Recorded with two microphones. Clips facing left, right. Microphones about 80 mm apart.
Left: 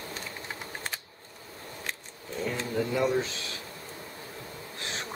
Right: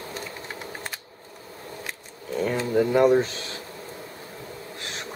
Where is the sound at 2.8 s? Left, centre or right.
Right.